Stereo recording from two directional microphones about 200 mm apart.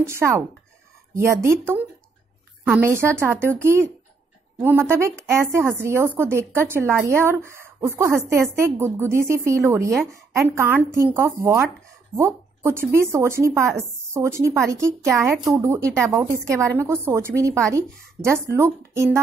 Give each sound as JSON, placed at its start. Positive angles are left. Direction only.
{"t": 0.0, "sound": "a woman's voice", "side_deg": -15}
{"t": 2.6, "sound": "a woman's voice", "side_deg": -10}